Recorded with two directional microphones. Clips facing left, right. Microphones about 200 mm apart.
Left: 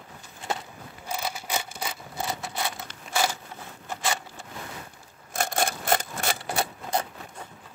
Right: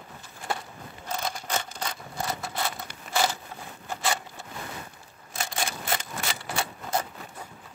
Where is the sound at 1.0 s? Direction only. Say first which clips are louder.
Even; 10° left (ahead or behind).